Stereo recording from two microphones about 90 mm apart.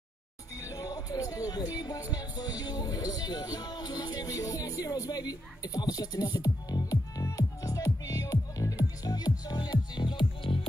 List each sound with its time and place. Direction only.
0.6 s music: 40° left (ahead or behind)
2.1 s speech: 45° left (ahead or behind)
6.4 s music: 40° left (ahead or behind); by 10.7 s 80° left